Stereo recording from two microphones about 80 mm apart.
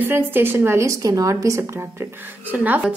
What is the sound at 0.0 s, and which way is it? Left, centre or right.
A woman's voice, right.